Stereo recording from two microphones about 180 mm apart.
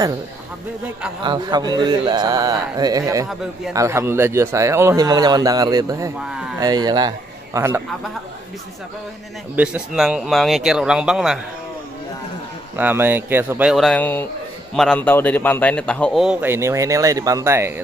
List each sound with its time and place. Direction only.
1.2 s a man's voice: 25° right (ahead or behind)
9.6 s a man's voice: 5° right (ahead or behind)
12.7 s a man's voice: 10° right (ahead or behind)